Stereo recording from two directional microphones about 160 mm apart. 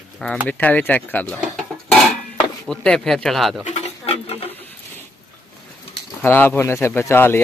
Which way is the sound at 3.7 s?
40° left (ahead or behind).